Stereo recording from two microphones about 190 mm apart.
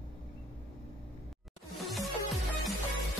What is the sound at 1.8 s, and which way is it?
Music, centre (ahead or behind).